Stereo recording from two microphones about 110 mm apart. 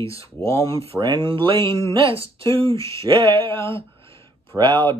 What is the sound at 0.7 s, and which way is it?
Speech, 55° right (ahead or behind).